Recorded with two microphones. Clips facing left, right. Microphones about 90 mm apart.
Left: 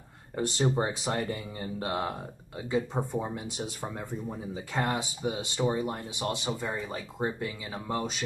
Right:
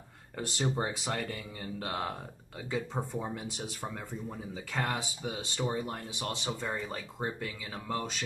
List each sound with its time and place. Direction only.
0.4 s speech: 25° left (ahead or behind)